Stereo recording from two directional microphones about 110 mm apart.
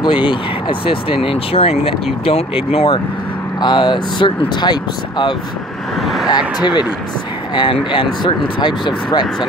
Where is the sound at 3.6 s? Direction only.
45° left (ahead or behind).